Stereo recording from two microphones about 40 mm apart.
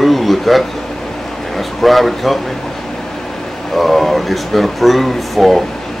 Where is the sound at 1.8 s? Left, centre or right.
Centre.